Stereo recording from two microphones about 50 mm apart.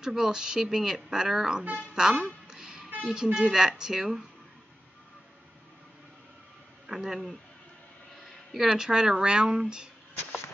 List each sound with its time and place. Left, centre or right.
0.0 s speech: centre
1.8 s music: centre
3.0 s speech: centre
6.9 s speech: centre
8.6 s speech: centre